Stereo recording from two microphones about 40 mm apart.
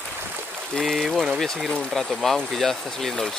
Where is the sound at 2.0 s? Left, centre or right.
Centre.